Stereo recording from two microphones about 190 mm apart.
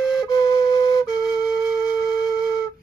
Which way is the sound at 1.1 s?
5° right (ahead or behind).